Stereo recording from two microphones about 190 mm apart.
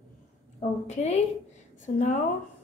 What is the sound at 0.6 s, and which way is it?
A woman's voice, 35° left (ahead or behind).